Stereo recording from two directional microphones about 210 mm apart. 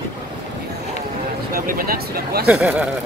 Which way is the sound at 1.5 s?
45° right (ahead or behind).